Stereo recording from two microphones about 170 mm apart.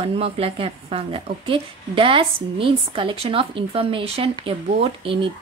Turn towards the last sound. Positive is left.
turn(degrees=-30)  # may be behind; listen again after turning